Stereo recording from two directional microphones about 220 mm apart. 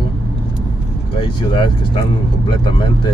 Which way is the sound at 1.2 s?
20° left (ahead or behind).